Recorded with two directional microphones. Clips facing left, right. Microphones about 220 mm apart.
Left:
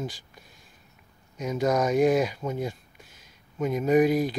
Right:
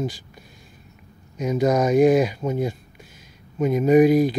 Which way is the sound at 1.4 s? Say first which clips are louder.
Right 5 dB; 10° right (ahead or behind).